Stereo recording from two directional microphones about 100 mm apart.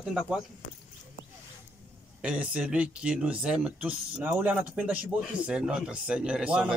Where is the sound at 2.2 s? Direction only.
10° right (ahead or behind).